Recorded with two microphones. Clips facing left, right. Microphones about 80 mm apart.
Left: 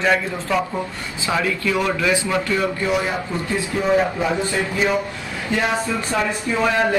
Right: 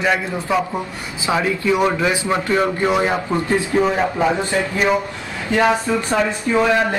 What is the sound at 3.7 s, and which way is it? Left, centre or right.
Speech, right.